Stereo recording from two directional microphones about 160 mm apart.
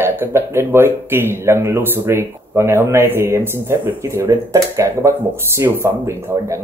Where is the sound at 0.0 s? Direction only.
15° right (ahead or behind).